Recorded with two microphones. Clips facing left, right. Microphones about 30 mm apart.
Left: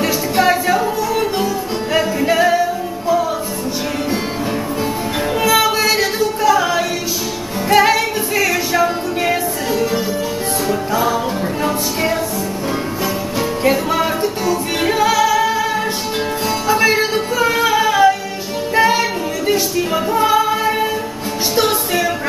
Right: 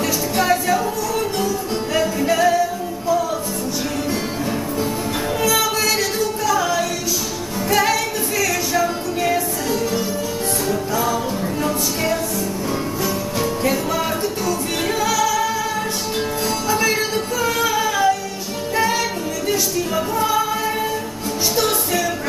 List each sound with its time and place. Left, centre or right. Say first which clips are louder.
0.0 s music: left 5 dB; left
5.4 s music: left 5 dB; left
7.7 s a capella: left 6 dB; left
10.7 s music: left 4 dB; left
13.4 s music: left 5 dB; left
16.6 s music: left 6 dB; left